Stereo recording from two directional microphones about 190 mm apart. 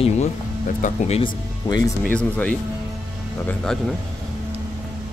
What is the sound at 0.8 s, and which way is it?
Speech, 35° left (ahead or behind).